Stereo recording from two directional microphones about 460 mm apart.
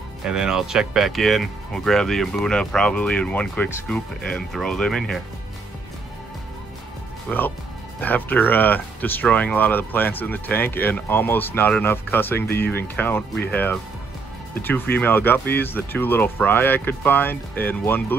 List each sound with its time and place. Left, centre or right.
0.2 s speech: centre
7.2 s speech: centre